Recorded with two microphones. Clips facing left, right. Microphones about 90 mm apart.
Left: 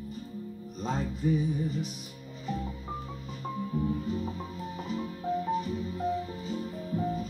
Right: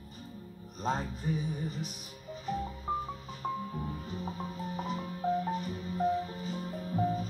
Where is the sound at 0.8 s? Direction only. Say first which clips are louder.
Left 2 dB; 45° right (ahead or behind).